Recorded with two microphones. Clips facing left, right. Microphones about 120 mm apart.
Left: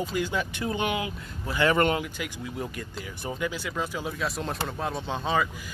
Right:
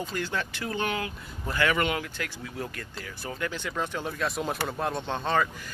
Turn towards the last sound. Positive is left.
turn(degrees=5)  # may be behind; listen again after turning